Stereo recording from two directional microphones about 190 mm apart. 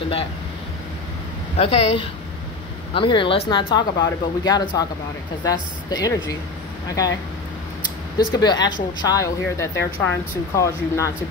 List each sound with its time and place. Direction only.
1.6 s a woman's voice: 30° left (ahead or behind)
8.3 s a woman's voice: 20° left (ahead or behind)